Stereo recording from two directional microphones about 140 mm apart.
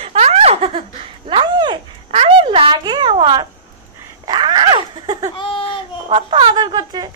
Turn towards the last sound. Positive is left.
turn(degrees=-30)  # may be behind; listen again after turning